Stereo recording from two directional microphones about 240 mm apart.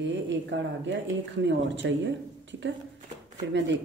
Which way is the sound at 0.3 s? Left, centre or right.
Right.